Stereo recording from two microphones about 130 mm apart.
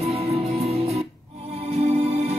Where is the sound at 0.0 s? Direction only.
50° right (ahead or behind).